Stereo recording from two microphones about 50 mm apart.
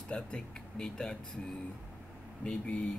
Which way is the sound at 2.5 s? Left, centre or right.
Left.